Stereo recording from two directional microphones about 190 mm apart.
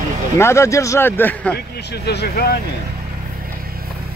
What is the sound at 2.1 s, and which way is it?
Speech, 60° left (ahead or behind).